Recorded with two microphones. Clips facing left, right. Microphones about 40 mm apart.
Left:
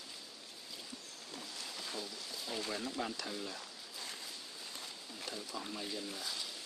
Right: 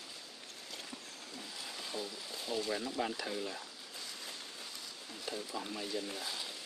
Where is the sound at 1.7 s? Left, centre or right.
Centre.